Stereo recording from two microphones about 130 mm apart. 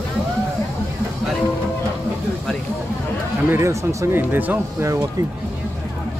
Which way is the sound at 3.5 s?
20° right (ahead or behind).